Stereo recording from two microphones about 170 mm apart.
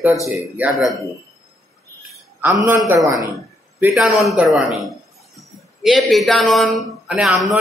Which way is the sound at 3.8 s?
Centre (ahead or behind).